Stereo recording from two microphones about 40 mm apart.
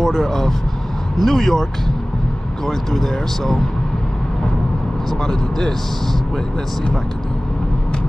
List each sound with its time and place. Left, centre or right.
0.0 s speech: centre
5.2 s speech: centre